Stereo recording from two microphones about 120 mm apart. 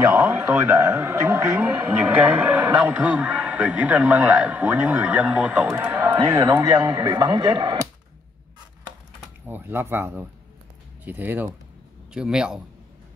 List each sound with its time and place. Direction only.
0.1 s a man's voice: 10° right (ahead or behind)
6.1 s speech: 25° right (ahead or behind); by 7.8 s 40° right (ahead or behind)
9.5 s a man's voice: 15° right (ahead or behind)